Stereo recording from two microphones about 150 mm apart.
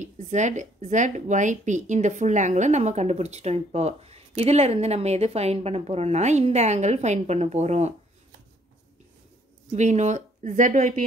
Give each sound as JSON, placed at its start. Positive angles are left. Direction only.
{"t": 0.0, "sound": "a woman's voice", "side_deg": -50}
{"t": 9.7, "sound": "a woman's voice", "side_deg": -50}